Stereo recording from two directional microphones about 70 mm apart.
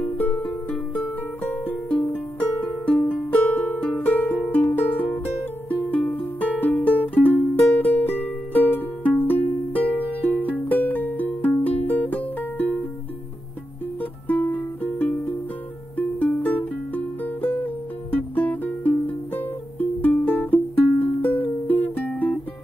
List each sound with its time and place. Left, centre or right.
0.2 s music: left
14.2 s music: left